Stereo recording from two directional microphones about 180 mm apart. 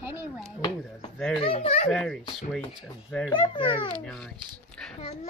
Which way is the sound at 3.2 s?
25° left (ahead or behind).